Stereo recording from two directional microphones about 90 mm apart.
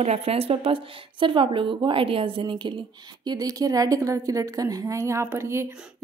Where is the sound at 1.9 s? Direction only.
80° right; by 2.7 s 60° right (ahead or behind).